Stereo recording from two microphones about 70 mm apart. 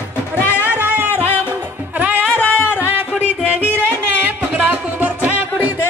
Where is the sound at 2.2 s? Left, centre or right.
Left.